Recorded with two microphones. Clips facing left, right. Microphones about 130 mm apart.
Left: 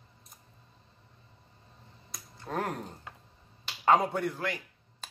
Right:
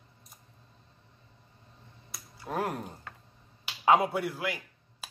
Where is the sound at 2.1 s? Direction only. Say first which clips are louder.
Right 1 dB; 5° right (ahead or behind).